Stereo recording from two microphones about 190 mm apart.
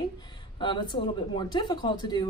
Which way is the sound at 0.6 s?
25° left (ahead or behind).